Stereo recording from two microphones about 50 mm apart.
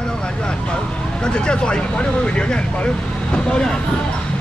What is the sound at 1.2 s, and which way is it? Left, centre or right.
Speech, centre.